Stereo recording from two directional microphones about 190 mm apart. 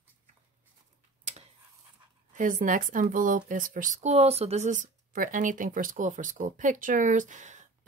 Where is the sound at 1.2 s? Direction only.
35° right (ahead or behind).